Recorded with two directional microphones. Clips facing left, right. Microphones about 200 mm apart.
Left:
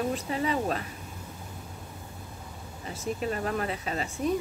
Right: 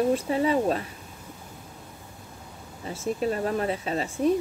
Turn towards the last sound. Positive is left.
turn(degrees=-30)  # may be behind; listen again after turning